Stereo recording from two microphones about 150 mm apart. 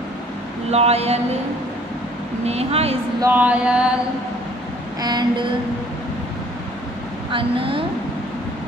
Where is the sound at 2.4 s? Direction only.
45° right (ahead or behind).